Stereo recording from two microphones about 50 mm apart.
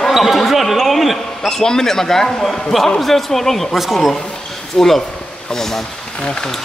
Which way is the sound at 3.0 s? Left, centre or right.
Centre.